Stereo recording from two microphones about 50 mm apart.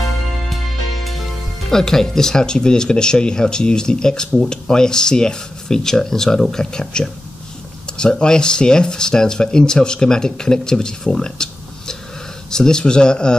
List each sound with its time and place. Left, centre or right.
1.7 s speech: centre